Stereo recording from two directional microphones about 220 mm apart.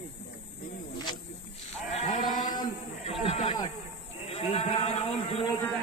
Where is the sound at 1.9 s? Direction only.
30° left (ahead or behind).